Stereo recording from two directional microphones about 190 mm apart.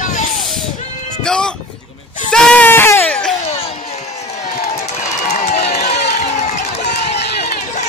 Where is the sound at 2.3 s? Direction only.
5° left (ahead or behind).